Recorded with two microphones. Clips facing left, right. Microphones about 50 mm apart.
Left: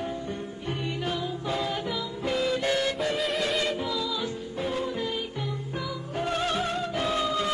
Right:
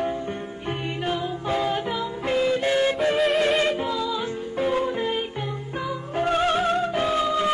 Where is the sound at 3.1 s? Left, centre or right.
Centre.